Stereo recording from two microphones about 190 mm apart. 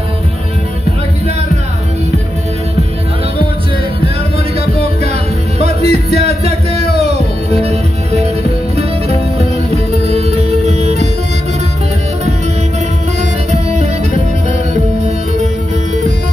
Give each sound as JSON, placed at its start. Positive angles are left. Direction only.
{"t": 5.6, "sound": "music", "side_deg": -35}
{"t": 5.9, "sound": "music", "side_deg": 55}
{"t": 7.0, "sound": "music", "side_deg": -35}
{"t": 13.5, "sound": "music", "side_deg": -35}